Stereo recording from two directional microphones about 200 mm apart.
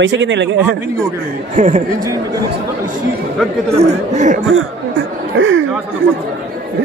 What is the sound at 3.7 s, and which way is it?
Speech, 35° right (ahead or behind).